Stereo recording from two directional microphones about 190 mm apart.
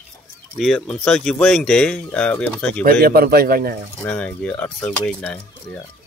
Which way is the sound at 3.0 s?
55° right (ahead or behind).